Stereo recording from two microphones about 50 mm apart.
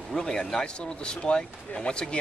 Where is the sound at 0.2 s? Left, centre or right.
Centre.